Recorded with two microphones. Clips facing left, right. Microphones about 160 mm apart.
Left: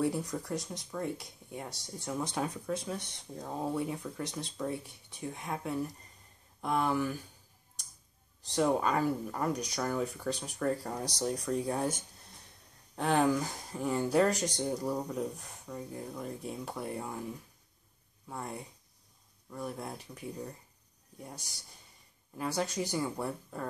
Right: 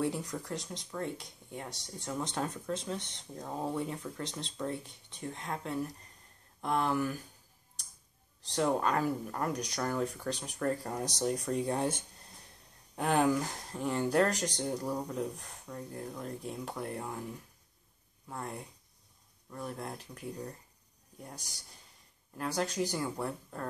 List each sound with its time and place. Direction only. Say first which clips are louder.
0.0 s speech: left 2 dB; 5° left (ahead or behind)
8.5 s speech: left 1 dB; 5° left (ahead or behind)
12.9 s speech: even; centre (ahead or behind)
18.3 s speech: even; centre (ahead or behind)
22.4 s speech: even; centre (ahead or behind)